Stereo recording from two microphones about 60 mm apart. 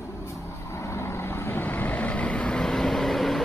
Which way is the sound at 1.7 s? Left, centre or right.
Left.